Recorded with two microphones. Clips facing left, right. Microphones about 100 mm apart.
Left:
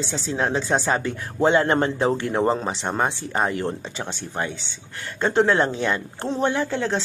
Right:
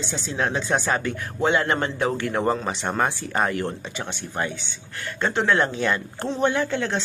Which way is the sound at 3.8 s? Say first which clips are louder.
Left 1 dB; 30° left (ahead or behind).